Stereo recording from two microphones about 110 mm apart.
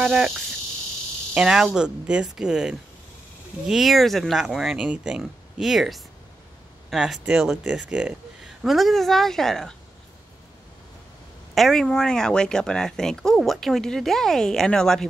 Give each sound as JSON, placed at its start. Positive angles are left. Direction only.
{"t": 0.0, "sound": "speech", "side_deg": -5}
{"t": 1.3, "sound": "speech", "side_deg": -5}
{"t": 11.5, "sound": "speech", "side_deg": 0}